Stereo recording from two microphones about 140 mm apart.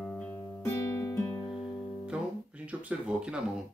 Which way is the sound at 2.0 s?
10° right (ahead or behind).